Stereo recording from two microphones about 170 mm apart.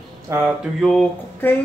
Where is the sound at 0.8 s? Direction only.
5° left (ahead or behind).